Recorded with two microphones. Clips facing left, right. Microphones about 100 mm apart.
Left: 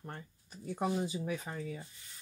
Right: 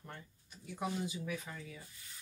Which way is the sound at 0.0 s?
40° left (ahead or behind).